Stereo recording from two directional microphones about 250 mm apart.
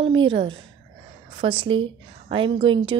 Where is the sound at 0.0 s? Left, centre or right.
Right.